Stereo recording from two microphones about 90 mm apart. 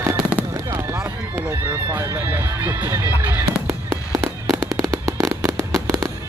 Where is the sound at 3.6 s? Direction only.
30° right (ahead or behind).